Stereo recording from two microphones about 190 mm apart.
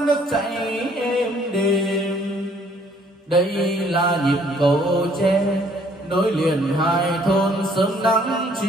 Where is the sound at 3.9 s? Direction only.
25° right (ahead or behind).